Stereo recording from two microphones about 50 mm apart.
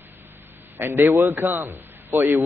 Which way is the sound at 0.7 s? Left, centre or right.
Right.